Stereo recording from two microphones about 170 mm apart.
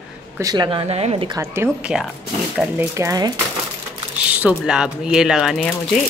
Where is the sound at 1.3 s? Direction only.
15° right (ahead or behind).